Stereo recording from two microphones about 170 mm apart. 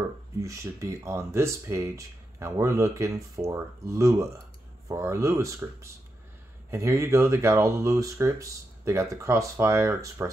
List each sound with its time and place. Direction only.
0.4 s speech: 20° right (ahead or behind)